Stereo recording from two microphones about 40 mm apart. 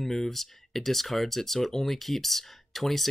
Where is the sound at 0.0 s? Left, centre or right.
Centre.